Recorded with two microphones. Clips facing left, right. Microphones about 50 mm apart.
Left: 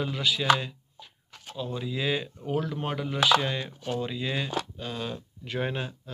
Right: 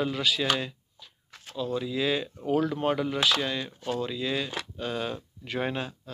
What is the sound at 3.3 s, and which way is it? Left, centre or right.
Speech, centre.